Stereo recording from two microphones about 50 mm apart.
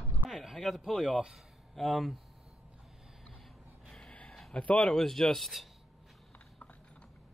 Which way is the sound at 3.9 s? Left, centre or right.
Left.